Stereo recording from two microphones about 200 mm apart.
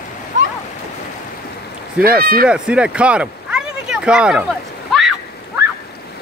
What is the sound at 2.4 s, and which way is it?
Speech, 5° right (ahead or behind).